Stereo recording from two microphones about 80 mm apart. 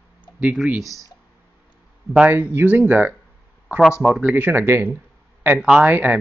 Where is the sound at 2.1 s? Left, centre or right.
Right.